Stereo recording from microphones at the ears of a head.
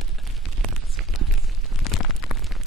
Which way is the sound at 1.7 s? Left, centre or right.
Left.